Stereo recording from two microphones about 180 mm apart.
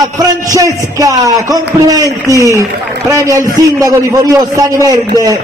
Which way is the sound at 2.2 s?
15° left (ahead or behind).